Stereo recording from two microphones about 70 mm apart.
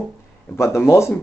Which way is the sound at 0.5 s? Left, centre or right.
Left.